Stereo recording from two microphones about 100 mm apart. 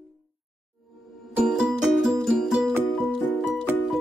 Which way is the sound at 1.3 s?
5° right (ahead or behind).